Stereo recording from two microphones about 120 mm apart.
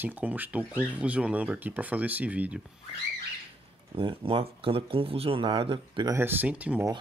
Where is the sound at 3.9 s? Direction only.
50° right (ahead or behind).